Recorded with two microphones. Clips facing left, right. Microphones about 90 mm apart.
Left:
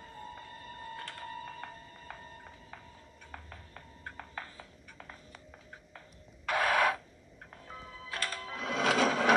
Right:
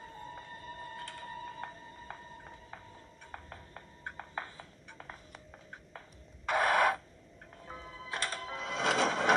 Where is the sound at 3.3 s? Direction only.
20° right (ahead or behind).